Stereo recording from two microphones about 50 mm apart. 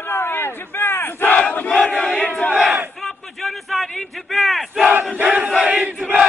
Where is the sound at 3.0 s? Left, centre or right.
Centre.